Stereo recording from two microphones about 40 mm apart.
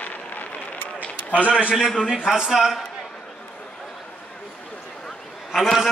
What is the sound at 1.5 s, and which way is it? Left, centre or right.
A man's voice, right.